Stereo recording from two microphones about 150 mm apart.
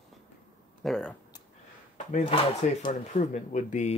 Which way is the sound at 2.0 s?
50° left (ahead or behind).